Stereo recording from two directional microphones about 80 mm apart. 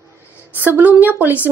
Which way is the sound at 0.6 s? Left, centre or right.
Right.